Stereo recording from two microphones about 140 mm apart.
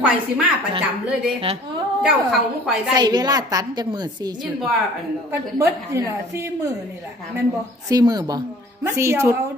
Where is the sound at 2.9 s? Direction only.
30° right (ahead or behind).